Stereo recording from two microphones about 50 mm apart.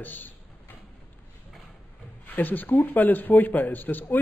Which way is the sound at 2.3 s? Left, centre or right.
Left.